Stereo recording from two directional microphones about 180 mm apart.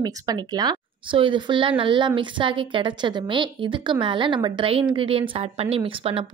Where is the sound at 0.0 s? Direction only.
20° right (ahead or behind).